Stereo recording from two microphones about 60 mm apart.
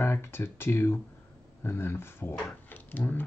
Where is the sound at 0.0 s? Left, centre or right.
Left.